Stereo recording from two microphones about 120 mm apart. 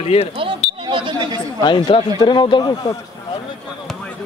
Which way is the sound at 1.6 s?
40° left (ahead or behind).